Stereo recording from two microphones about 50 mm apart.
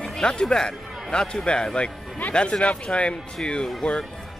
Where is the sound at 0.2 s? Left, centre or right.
Centre.